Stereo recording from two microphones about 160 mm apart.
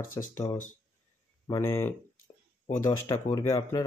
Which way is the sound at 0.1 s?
15° left (ahead or behind).